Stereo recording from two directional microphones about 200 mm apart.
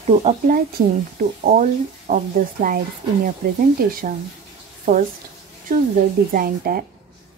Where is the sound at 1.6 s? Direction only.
45° right (ahead or behind).